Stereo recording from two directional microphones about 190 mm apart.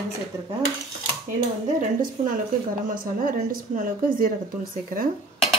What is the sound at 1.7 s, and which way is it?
Speech, 45° right (ahead or behind).